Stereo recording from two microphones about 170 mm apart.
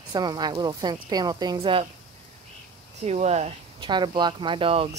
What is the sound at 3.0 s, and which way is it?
Speech, 40° right (ahead or behind).